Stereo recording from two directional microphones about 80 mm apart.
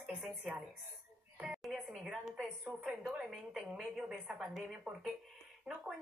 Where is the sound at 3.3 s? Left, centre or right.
Centre.